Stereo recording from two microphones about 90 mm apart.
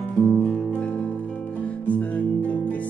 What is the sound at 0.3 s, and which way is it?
Guitar, 5° left (ahead or behind).